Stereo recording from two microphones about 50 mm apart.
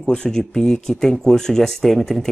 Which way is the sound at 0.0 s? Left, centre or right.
Centre.